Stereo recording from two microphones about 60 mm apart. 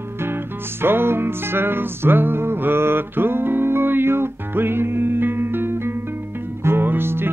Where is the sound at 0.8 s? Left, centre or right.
Right.